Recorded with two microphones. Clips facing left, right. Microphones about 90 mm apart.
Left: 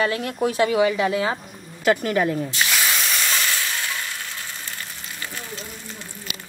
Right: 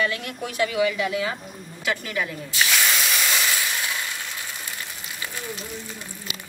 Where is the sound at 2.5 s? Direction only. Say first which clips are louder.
Even; centre (ahead or behind).